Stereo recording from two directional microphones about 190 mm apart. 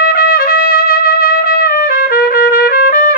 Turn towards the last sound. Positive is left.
turn(degrees=50)  # may be behind; listen again after turning